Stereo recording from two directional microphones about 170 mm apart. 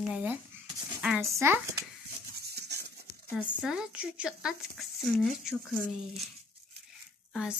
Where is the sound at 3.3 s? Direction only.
5° right (ahead or behind).